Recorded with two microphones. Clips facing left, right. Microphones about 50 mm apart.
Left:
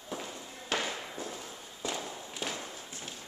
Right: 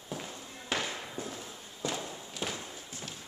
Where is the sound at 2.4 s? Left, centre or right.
Centre.